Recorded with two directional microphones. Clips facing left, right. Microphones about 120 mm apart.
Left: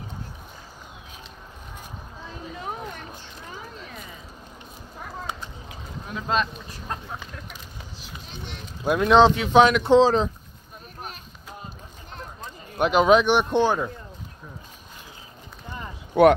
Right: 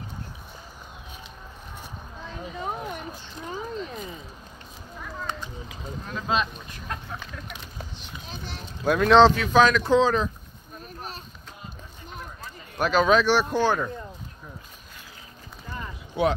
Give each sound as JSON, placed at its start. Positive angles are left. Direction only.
{"t": 6.2, "sound": "speech", "side_deg": -5}
{"t": 6.9, "sound": "a sound", "side_deg": 35}
{"t": 8.3, "sound": "a sound", "side_deg": -35}
{"t": 8.8, "sound": "speech", "side_deg": 10}
{"t": 12.4, "sound": "speech", "side_deg": 20}
{"t": 16.1, "sound": "speech", "side_deg": 60}